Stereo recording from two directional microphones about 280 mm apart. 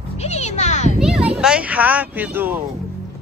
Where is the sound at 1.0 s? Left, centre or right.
Centre.